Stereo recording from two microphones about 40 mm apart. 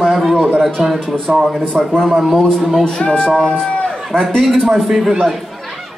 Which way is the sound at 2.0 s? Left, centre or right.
Centre.